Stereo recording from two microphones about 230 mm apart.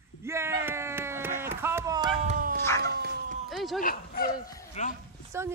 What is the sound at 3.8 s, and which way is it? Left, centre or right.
Speech, left.